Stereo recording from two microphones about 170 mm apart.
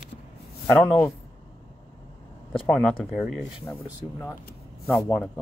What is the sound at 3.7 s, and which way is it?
Speech, 15° left (ahead or behind).